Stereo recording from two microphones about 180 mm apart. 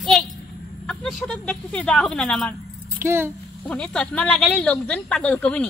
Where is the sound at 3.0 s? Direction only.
15° right (ahead or behind).